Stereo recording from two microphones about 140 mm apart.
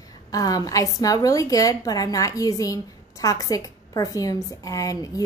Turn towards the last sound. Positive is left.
turn(degrees=25)  # may be behind; listen again after turning